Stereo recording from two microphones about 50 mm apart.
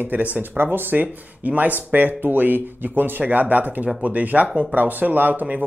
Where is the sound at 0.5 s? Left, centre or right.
Right.